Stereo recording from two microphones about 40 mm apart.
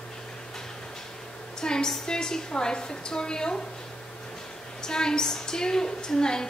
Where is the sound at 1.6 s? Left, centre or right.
Centre.